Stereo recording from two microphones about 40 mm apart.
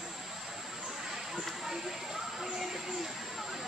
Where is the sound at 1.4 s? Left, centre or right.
Centre.